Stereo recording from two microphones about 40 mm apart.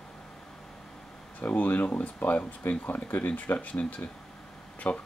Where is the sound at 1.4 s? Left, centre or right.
Left.